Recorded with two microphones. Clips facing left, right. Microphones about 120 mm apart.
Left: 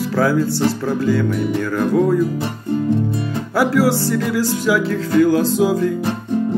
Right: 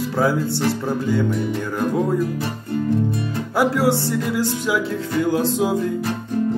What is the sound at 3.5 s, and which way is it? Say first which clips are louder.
Speech: left 2 dB; 20° right (ahead or behind).